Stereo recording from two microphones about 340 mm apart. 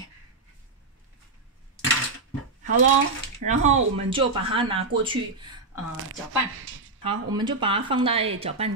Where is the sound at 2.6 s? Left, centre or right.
Right.